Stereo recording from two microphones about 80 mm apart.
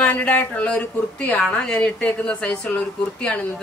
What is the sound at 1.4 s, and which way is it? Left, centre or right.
A woman's voice, centre.